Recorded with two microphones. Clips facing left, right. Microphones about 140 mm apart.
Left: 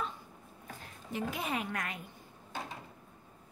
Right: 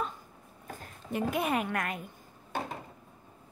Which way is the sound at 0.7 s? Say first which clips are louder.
Right 5 dB; 55° right (ahead or behind).